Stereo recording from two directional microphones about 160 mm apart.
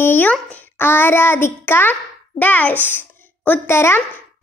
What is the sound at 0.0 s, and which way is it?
A child's voice, 10° left (ahead or behind).